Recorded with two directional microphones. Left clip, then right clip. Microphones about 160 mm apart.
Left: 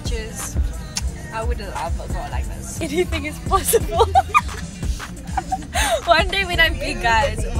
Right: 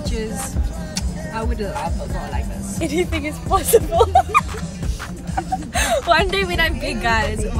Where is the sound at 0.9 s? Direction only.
15° right (ahead or behind).